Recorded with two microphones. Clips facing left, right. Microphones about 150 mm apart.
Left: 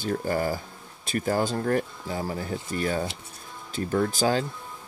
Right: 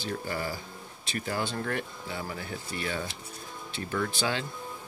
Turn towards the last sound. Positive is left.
turn(degrees=40)  # may be behind; listen again after turning